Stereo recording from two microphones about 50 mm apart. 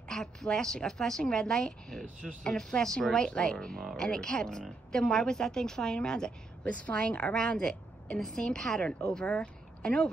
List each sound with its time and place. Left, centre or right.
0.1 s speech: centre